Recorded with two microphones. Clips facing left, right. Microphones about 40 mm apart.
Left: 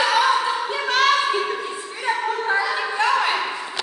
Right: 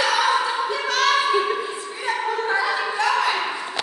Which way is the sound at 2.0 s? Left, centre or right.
Centre.